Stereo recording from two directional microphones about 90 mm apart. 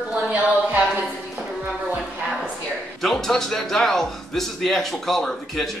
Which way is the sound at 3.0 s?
5° left (ahead or behind).